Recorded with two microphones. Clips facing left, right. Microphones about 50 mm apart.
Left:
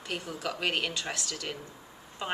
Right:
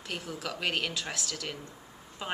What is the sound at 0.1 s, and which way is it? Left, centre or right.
Speech, centre.